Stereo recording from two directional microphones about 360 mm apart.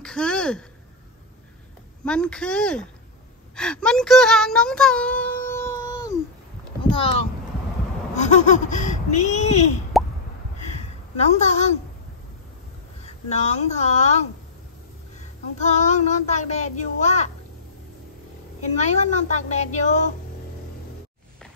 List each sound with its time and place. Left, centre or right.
0.0 s a sound: centre
2.0 s a child's voice: centre
10.7 s a sound: centre
13.0 s speech: centre
15.6 s speech: centre
18.6 s speech: centre